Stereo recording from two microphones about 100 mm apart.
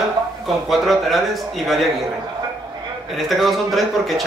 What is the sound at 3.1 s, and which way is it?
A man's voice, centre (ahead or behind).